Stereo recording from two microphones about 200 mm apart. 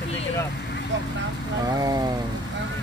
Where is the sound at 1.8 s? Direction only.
20° right (ahead or behind).